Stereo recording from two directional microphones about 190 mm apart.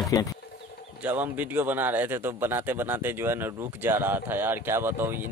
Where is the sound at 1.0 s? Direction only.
10° right (ahead or behind).